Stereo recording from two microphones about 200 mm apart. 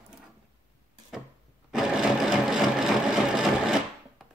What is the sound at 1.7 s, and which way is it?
Sewing machine, centre (ahead or behind).